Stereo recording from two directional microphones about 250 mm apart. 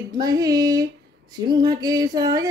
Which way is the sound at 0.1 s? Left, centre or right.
Centre.